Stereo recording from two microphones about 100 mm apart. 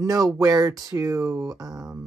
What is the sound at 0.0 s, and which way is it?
Speech, 35° right (ahead or behind).